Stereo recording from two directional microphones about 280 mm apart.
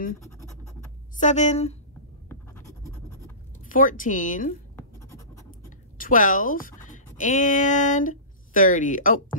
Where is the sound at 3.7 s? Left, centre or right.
Left.